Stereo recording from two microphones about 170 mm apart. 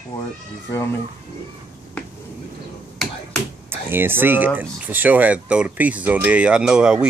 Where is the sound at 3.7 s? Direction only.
10° right (ahead or behind).